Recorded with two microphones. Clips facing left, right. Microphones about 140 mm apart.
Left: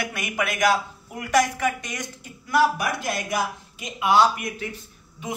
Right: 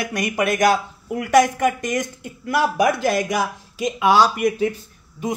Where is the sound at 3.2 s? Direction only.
85° right.